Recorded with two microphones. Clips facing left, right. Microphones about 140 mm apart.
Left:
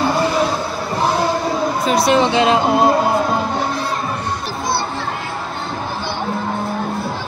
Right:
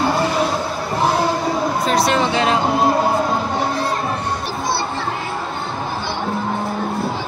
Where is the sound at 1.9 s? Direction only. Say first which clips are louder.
Left 4 dB; 15° left (ahead or behind).